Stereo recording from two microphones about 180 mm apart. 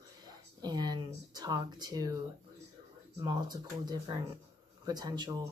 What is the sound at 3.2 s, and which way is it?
Speech, 25° right (ahead or behind).